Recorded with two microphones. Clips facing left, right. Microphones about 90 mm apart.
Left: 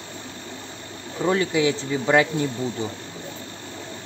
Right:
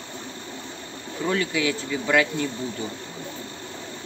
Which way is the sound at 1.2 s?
25° left (ahead or behind).